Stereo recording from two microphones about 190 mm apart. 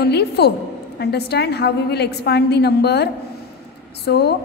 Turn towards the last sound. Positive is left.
turn(degrees=60)  # may be behind; listen again after turning